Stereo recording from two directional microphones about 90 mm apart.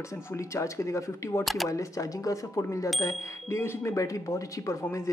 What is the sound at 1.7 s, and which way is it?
Speech, 40° left (ahead or behind).